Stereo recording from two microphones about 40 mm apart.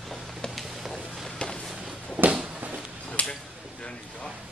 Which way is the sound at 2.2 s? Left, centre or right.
Right.